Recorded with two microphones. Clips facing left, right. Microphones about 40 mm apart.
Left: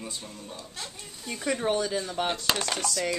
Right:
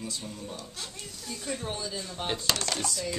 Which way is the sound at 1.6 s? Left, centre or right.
Left.